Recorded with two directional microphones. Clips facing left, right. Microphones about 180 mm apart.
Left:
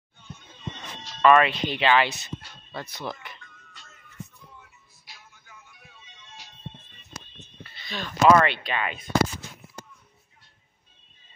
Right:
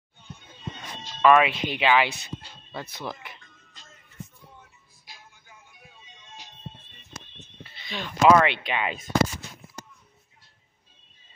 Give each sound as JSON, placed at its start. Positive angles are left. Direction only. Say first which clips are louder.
{"t": 1.2, "sound": "speech", "louder": "even", "side_deg": -5}
{"t": 3.3, "sound": "music", "louder": "left 2 dB", "side_deg": -35}
{"t": 5.6, "sound": "music", "louder": "even", "side_deg": -15}
{"t": 7.6, "sound": "speech", "louder": "even", "side_deg": -20}